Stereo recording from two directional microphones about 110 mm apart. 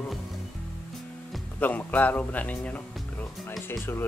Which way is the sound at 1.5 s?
15° left (ahead or behind).